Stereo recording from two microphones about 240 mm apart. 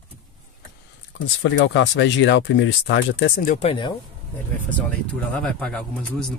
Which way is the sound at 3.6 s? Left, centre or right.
Centre.